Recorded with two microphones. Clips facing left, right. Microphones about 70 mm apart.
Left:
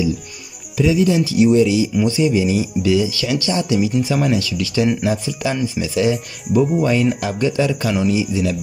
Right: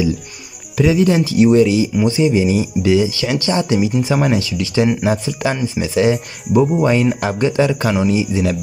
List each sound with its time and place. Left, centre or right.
0.7 s speech: right
2.0 s speech: right